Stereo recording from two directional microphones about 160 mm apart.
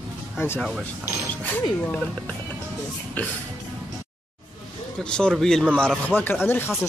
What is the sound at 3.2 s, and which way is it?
Speech, 10° left (ahead or behind).